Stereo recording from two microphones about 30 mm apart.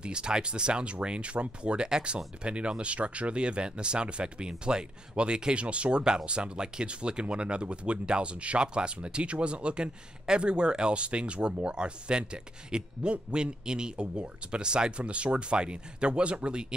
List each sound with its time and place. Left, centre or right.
0.0 s speech: right
1.9 s speech: right